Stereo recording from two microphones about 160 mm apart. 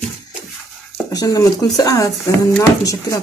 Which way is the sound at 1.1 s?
25° left (ahead or behind).